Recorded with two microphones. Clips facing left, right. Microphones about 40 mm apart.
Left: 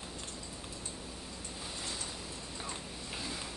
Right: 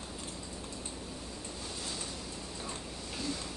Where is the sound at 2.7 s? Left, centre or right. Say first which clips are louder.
Right 1 dB; centre.